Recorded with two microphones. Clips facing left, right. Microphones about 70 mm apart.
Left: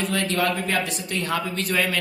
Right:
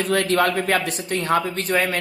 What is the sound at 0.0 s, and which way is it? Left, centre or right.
A man's voice, right.